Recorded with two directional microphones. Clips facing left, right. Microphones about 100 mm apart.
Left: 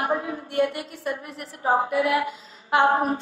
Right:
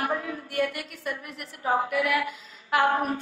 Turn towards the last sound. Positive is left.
turn(degrees=25)  # may be behind; listen again after turning